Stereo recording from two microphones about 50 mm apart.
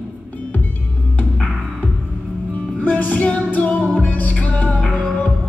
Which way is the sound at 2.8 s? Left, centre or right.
Left.